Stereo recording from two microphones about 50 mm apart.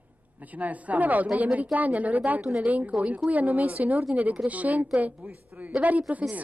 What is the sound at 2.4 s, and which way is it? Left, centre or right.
Speech, centre.